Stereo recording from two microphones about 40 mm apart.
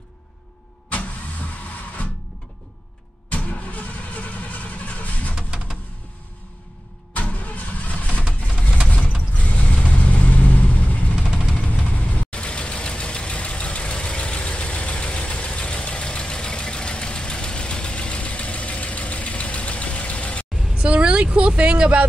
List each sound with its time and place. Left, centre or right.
0.8 s vehicle: left
3.3 s vehicle: left
7.2 s vehicle: left
8.5 s a sound: left
8.8 s vehicle: left
11.2 s vehicle: centre
11.5 s vehicle: left
20.7 s vehicle: right